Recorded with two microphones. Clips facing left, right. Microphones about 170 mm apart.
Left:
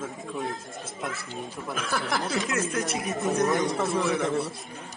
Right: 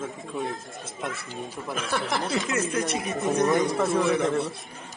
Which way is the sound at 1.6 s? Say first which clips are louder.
Right 2 dB; centre (ahead or behind).